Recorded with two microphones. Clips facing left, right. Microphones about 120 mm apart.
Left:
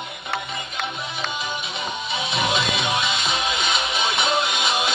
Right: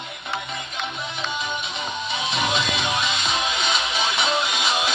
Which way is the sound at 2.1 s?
5° left (ahead or behind).